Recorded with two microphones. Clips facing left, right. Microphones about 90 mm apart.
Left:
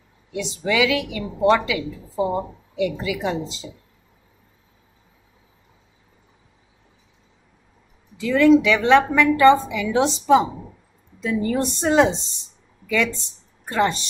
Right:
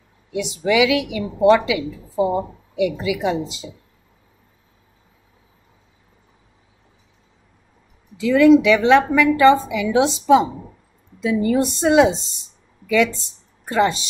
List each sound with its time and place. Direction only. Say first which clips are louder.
0.3 s a woman's voice: right 4 dB; 10° right (ahead or behind)
8.2 s a woman's voice: right 3 dB; 10° right (ahead or behind)
13.7 s speech: right 3 dB; 5° right (ahead or behind)